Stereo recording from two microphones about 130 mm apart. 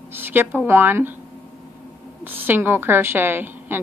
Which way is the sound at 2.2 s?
15° right (ahead or behind).